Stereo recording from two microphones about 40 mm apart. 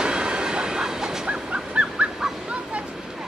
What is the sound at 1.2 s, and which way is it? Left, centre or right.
Dog, right.